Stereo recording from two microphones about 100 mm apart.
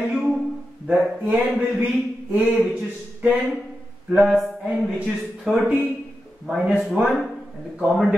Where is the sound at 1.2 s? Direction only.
15° right (ahead or behind).